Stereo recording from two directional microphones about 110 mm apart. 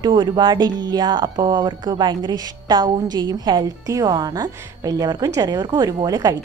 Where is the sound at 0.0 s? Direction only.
45° right (ahead or behind).